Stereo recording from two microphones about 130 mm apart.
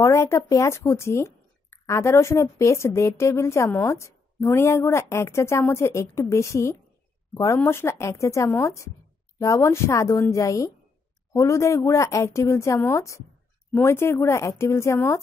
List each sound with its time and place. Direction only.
0.0 s speech: 20° left (ahead or behind)